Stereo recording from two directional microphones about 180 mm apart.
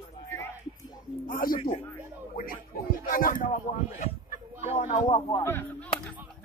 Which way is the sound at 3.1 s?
50° left (ahead or behind).